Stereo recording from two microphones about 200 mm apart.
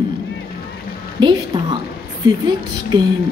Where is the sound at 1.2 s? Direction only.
20° right (ahead or behind).